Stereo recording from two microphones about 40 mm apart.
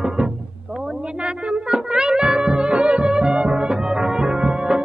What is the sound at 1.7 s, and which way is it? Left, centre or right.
Music, right.